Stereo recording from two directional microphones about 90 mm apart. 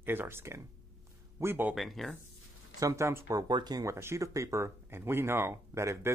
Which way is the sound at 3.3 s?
50° right (ahead or behind).